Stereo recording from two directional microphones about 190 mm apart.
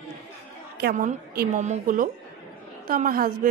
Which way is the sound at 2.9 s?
50° right (ahead or behind).